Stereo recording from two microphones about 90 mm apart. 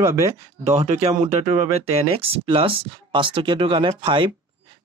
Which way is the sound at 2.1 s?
90° right.